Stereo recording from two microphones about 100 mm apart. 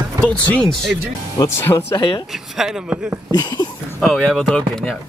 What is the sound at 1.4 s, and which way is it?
Speech, 25° left (ahead or behind).